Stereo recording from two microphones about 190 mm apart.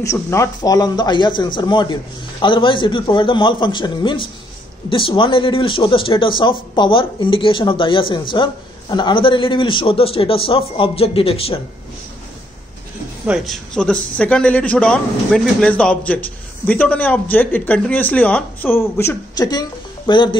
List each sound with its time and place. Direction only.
0.0 s speech: 15° left (ahead or behind); by 11.6 s 30° left (ahead or behind)
13.3 s a man's voice: centre (ahead or behind); by 20.3 s 25° left (ahead or behind)